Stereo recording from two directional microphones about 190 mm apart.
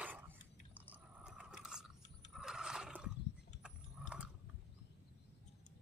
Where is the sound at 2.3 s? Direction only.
5° right (ahead or behind).